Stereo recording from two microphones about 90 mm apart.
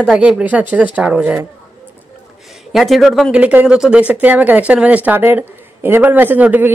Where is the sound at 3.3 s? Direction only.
15° right (ahead or behind).